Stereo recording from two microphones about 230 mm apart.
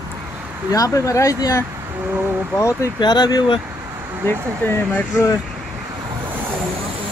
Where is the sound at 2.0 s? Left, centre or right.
Centre.